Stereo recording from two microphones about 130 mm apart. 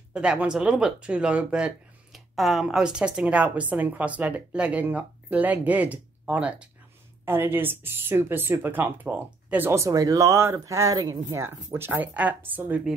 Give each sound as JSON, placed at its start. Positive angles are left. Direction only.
{"t": 0.1, "sound": "speech", "side_deg": -10}